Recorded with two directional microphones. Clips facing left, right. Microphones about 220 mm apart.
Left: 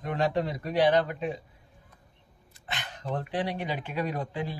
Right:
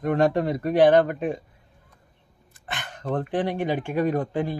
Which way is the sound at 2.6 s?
50° right (ahead or behind).